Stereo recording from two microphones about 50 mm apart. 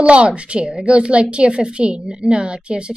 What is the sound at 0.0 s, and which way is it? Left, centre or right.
A woman's voice, right.